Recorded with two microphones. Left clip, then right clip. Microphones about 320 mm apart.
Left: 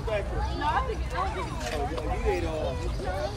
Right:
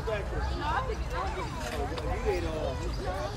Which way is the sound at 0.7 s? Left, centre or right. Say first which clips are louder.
Left 4 dB; left.